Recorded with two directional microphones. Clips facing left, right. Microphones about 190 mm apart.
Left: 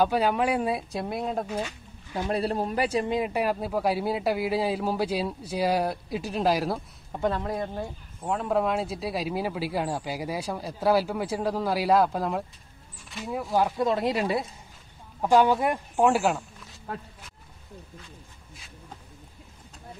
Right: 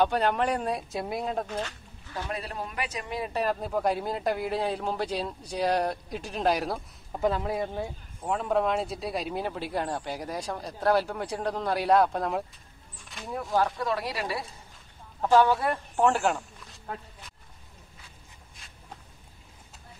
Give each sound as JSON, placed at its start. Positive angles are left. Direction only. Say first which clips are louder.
{"t": 0.0, "sound": "speech", "louder": "left 1 dB", "side_deg": 5}
{"t": 2.2, "sound": "a man's voice", "louder": "left 10 dB", "side_deg": 35}
{"t": 3.1, "sound": "speech", "louder": "left 3 dB", "side_deg": 15}
{"t": 13.6, "sound": "speech", "louder": "left 3 dB", "side_deg": 15}